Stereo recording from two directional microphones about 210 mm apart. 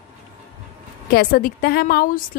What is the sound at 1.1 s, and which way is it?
Speech, 45° left (ahead or behind).